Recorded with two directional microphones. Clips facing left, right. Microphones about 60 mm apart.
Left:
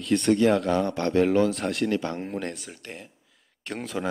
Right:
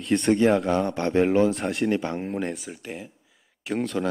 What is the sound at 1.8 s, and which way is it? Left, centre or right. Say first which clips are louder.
Speech: right 4 dB; centre.